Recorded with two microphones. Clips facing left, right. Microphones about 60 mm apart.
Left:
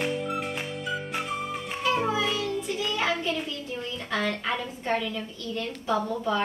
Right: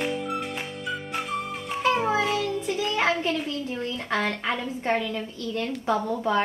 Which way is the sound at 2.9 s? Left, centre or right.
Right.